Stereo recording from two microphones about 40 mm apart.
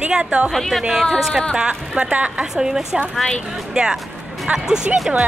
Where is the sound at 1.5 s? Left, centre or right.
Right.